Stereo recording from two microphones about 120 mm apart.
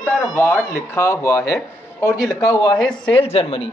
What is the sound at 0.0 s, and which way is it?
Speech, 20° left (ahead or behind).